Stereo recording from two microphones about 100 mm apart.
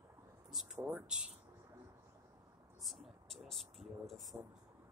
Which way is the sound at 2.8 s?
Centre (ahead or behind).